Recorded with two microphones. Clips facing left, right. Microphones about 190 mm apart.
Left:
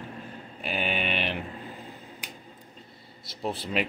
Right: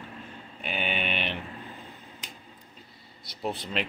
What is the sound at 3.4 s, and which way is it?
Speech, centre (ahead or behind).